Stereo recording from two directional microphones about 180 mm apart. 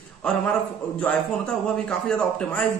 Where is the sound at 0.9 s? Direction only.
5° left (ahead or behind).